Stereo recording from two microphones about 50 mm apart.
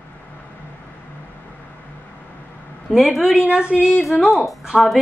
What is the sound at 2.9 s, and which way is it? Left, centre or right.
Speech, centre.